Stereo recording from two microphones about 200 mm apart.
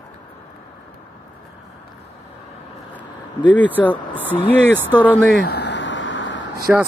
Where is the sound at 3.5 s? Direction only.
10° left (ahead or behind).